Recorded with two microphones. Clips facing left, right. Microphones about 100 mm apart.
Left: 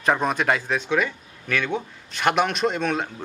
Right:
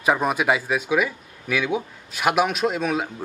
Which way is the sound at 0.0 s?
5° right (ahead or behind).